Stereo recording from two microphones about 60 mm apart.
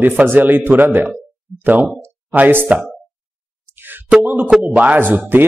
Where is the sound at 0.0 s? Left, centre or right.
Right.